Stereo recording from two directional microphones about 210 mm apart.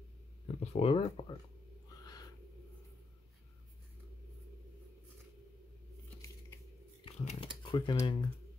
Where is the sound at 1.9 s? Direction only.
20° left (ahead or behind).